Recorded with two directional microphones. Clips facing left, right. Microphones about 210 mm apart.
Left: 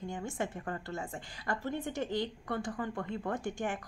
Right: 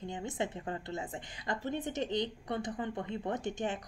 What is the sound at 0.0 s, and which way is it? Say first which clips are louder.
A woman's voice: even; 20° right (ahead or behind).